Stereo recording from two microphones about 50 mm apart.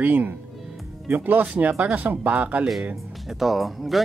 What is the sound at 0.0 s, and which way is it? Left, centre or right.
Speech, right.